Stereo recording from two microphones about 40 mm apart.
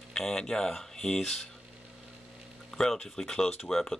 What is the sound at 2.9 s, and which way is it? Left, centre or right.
Speech, centre.